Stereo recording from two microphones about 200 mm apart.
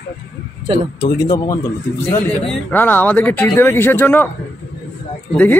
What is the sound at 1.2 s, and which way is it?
Speech, 15° left (ahead or behind).